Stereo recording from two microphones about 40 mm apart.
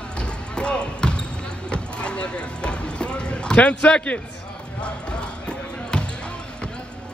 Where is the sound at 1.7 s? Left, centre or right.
Left.